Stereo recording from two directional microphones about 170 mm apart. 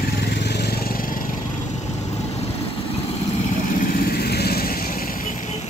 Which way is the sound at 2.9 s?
35° left (ahead or behind).